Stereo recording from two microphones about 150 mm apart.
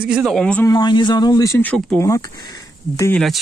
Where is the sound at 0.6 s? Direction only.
25° left (ahead or behind).